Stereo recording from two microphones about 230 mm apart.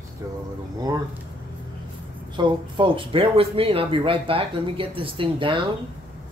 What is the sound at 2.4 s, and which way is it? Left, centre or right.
Speech, right.